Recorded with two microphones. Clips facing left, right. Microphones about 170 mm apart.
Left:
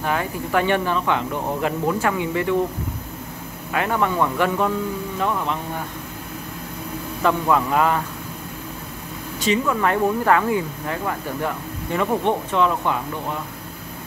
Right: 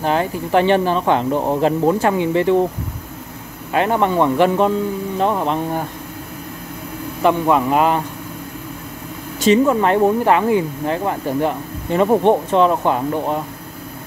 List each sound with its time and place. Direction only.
0.0 s speech: 30° right (ahead or behind)
3.7 s speech: 30° right (ahead or behind)
7.2 s speech: 20° right (ahead or behind)
9.5 s speech: 30° right (ahead or behind)